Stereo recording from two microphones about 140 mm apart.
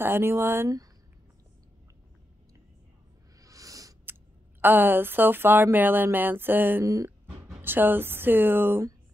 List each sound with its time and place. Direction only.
0.0 s speech: 15° right (ahead or behind)
3.3 s speech: 25° right (ahead or behind)